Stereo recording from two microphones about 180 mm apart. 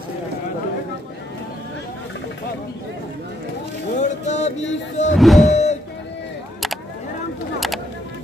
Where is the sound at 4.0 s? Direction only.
40° left (ahead or behind).